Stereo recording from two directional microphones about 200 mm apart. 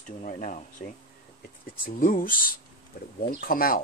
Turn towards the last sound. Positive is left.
turn(degrees=45)  # may be behind; listen again after turning